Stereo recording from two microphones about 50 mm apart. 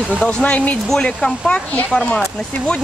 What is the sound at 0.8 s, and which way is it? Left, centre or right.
Speech, centre.